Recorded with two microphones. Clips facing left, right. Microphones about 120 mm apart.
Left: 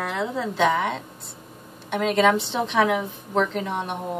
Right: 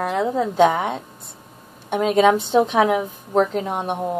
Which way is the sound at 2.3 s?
45° right (ahead or behind).